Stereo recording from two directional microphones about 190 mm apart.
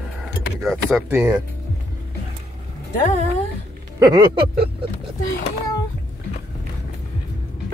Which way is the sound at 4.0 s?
20° right (ahead or behind).